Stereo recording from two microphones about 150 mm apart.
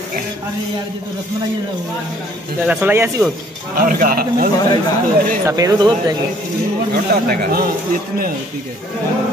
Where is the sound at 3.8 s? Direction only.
70° right (ahead or behind).